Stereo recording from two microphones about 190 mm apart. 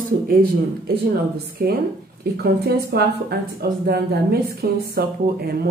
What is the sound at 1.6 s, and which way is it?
A woman's voice, 50° right (ahead or behind).